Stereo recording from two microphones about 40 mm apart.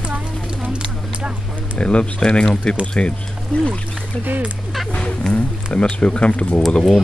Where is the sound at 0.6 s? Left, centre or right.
Right.